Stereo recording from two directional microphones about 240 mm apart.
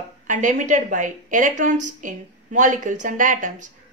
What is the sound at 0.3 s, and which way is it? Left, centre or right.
A woman's voice, right.